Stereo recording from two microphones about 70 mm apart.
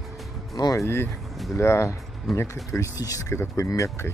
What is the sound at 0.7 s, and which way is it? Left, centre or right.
Speech, left.